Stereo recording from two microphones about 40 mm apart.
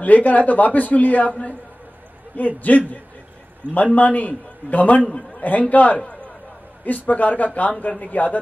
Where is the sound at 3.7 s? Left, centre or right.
Left.